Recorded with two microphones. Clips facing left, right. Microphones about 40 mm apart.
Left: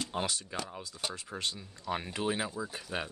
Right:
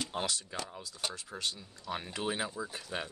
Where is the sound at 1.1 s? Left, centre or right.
Left.